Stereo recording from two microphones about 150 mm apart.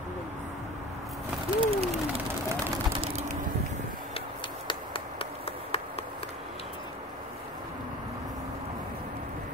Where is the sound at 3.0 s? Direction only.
45° right (ahead or behind).